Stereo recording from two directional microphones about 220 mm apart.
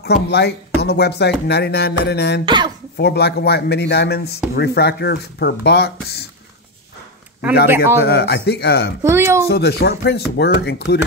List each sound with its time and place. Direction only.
0.0 s speech: 50° left (ahead or behind)
2.4 s speech: 20° right (ahead or behind)
3.0 s speech: 50° left (ahead or behind)
7.7 s speech: 10° right (ahead or behind)
8.0 s speech: 45° left (ahead or behind)
9.0 s speech: 10° right (ahead or behind)
9.5 s speech: 45° left (ahead or behind)